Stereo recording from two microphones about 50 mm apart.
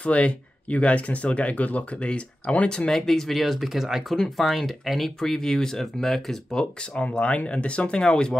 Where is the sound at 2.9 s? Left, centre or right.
Centre.